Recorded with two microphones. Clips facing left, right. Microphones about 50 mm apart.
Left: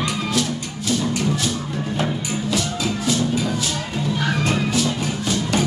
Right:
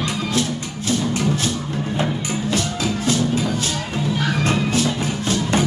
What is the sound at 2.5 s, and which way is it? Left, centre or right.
Music, right.